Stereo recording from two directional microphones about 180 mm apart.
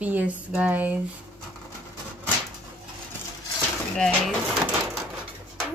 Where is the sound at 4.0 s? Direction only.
5° left (ahead or behind).